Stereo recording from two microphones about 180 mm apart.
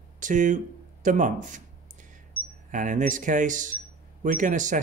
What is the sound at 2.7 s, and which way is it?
Speech, 45° right (ahead or behind).